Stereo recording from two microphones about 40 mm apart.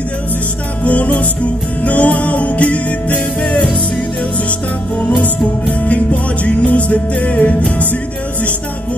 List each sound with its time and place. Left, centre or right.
0.8 s music: left
6.4 s music: left